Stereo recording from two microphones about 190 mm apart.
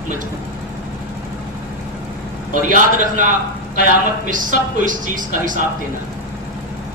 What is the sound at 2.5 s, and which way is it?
Speech, 45° right (ahead or behind).